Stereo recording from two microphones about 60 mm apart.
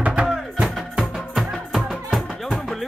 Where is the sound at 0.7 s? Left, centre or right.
Centre.